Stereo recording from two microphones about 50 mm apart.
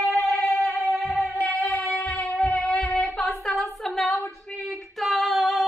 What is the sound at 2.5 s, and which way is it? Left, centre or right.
Music, centre.